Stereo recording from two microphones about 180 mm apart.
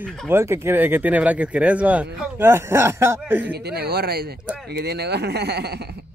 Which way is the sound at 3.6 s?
65° right (ahead or behind).